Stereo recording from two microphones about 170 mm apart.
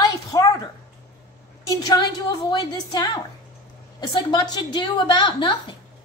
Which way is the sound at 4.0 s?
25° left (ahead or behind).